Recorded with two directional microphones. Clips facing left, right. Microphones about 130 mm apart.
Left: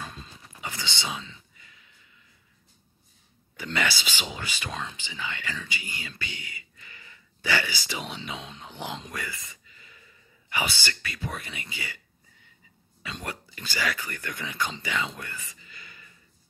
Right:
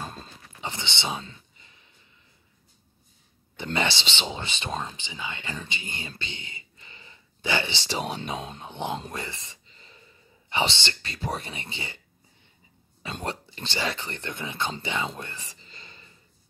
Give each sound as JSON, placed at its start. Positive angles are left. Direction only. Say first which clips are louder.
{"t": 0.0, "sound": "a sound", "louder": "right 3 dB", "side_deg": -40}
{"t": 0.6, "sound": "speech", "louder": "right 2 dB", "side_deg": -25}
{"t": 1.1, "sound": "speech", "louder": "right 3 dB", "side_deg": -45}
{"t": 1.6, "sound": "a sound", "louder": "left 1 dB", "side_deg": -30}
{"t": 3.6, "sound": "speech", "louder": "right 2 dB", "side_deg": -25}
{"t": 4.9, "sound": "speech", "louder": "even", "side_deg": -20}
{"t": 8.3, "sound": "speech", "louder": "right 5 dB", "side_deg": -35}
{"t": 8.6, "sound": "speech", "louder": "right 5 dB", "side_deg": -20}
{"t": 13.2, "sound": "speech", "louder": "right 6 dB", "side_deg": -30}
{"t": 15.1, "sound": "whispering", "louder": "right 1 dB", "side_deg": -25}